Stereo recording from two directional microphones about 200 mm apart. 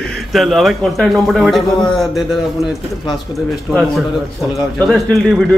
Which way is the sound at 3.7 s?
Centre (ahead or behind).